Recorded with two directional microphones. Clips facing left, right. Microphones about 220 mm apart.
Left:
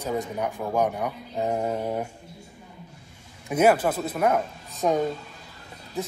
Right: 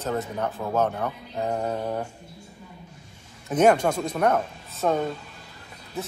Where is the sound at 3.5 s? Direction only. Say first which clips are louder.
Right 1 dB; 5° left (ahead or behind).